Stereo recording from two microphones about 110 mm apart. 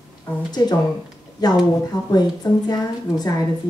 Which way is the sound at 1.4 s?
40° left (ahead or behind).